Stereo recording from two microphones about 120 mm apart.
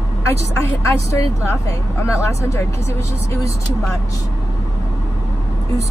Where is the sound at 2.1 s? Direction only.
25° left (ahead or behind).